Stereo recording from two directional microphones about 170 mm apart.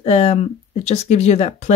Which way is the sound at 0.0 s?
40° left (ahead or behind).